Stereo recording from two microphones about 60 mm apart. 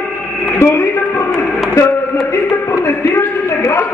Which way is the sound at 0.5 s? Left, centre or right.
Left.